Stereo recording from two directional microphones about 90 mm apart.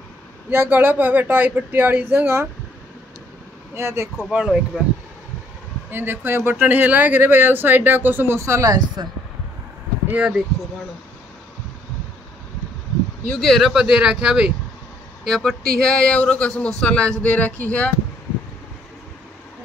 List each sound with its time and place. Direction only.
0.5 s speech: 25° right (ahead or behind)
3.7 s speech: 30° right (ahead or behind)
4.3 s speech: 10° right (ahead or behind)
5.9 s speech: 25° right (ahead or behind); by 9.1 s 50° right (ahead or behind)
10.0 s speech: 15° right (ahead or behind)
13.4 s speech: centre (ahead or behind)
15.2 s speech: 5° left (ahead or behind)